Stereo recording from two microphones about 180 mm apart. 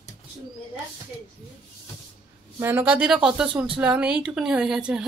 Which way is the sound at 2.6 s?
10° right (ahead or behind).